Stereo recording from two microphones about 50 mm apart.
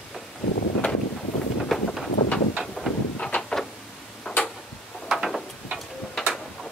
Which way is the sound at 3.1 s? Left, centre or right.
Left.